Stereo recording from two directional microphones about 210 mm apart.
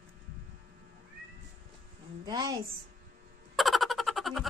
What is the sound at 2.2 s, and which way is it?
Speech, 15° right (ahead or behind).